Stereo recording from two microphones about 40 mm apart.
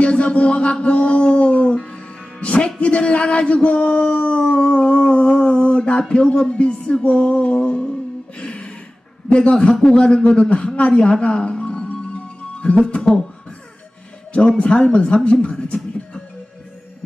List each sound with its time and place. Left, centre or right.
0.0 s a sound: left
2.4 s speech: left
8.4 s gasp: left
9.3 s a man's voice: left
10.9 s music: left
14.6 s a man's voice: left